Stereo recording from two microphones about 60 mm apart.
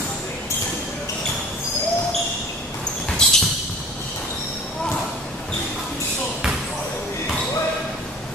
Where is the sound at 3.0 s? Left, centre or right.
Centre.